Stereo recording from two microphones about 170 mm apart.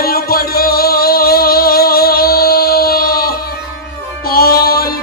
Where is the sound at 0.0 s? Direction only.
60° left (ahead or behind).